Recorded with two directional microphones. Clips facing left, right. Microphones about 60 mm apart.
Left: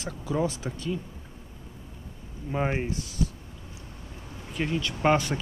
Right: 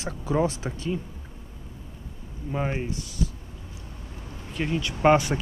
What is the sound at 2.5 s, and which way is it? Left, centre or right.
Speech, centre.